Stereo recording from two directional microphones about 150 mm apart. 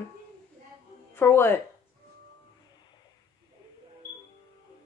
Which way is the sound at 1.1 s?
15° left (ahead or behind).